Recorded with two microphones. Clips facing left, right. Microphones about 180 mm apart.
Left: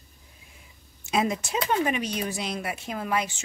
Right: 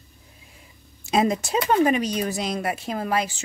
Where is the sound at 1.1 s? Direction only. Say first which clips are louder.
Right 4 dB; 35° right (ahead or behind).